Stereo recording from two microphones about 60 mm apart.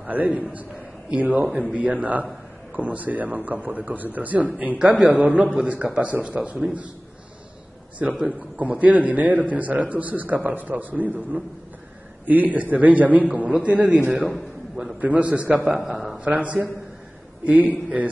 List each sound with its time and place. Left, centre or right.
0.0 s a man's voice: right
8.0 s a man's voice: right
15.6 s a man's voice: centre
16.3 s a man's voice: right